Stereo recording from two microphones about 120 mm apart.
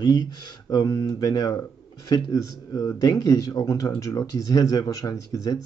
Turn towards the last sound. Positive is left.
turn(degrees=30)  # may be behind; listen again after turning